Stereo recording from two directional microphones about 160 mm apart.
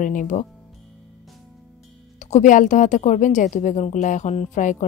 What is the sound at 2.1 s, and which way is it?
A woman's voice, 45° left (ahead or behind).